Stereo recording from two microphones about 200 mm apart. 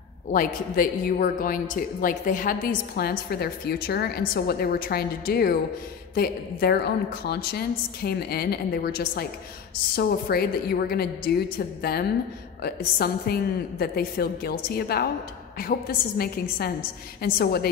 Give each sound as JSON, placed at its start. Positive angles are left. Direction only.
{"t": 0.3, "sound": "a woman's voice", "side_deg": 45}